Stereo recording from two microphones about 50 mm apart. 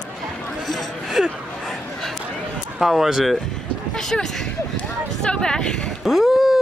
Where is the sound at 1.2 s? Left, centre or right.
Centre.